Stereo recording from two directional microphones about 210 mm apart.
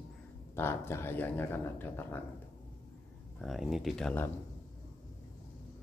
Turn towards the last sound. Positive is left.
turn(degrees=5)  # may be behind; listen again after turning